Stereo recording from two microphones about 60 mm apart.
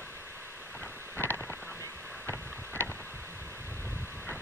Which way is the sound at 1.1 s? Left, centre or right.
Left.